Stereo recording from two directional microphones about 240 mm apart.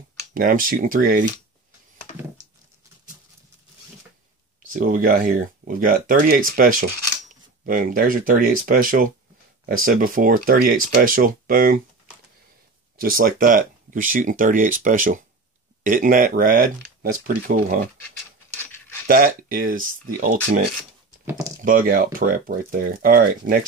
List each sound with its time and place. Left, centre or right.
0.3 s speech: right
4.7 s speech: right
12.9 s speech: right
18.6 s cutlery: centre
19.0 s speech: right
21.6 s speech: right